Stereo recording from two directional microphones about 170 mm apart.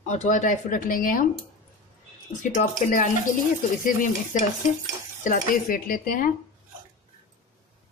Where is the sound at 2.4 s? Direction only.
50° left (ahead or behind).